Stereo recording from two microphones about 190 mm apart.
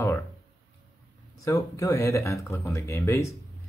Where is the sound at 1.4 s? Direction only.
15° left (ahead or behind).